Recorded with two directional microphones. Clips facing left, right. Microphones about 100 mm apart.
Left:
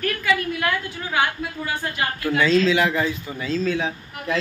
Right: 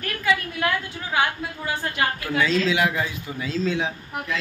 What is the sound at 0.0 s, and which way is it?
Speech, 25° right (ahead or behind).